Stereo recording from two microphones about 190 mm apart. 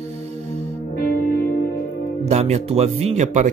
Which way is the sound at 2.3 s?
35° right (ahead or behind).